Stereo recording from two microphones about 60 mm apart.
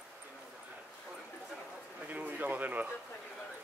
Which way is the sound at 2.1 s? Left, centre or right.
Right.